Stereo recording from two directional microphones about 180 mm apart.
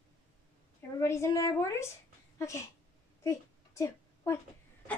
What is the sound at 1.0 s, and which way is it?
A woman's voice, 15° left (ahead or behind).